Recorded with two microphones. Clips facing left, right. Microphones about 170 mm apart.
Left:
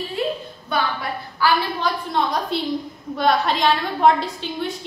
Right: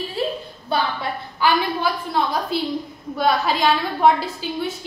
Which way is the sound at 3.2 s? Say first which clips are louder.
Even; centre (ahead or behind).